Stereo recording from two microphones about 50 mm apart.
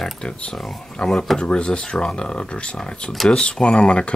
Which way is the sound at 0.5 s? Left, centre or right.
Centre.